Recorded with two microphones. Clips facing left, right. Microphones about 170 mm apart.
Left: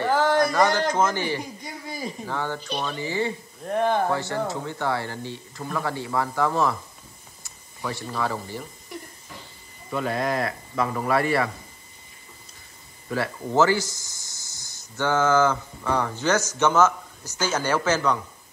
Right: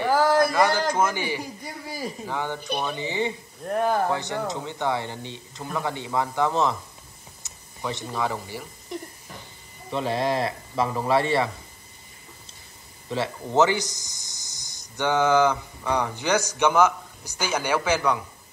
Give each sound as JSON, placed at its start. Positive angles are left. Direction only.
{"t": 0.0, "sound": "a man's voice", "side_deg": -10}
{"t": 2.3, "sound": "speech", "side_deg": -15}
{"t": 3.6, "sound": "speech", "side_deg": 0}
{"t": 4.1, "sound": "speech", "side_deg": -15}
{"t": 9.8, "sound": "speech", "side_deg": -25}
{"t": 13.1, "sound": "speech", "side_deg": -20}